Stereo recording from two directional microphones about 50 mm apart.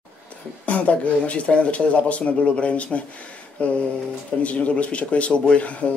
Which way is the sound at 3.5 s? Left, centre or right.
Left.